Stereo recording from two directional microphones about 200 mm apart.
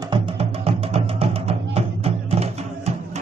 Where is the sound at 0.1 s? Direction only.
30° right (ahead or behind).